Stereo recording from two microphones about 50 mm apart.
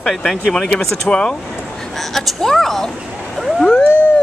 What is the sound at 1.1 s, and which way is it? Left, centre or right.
Speech, left.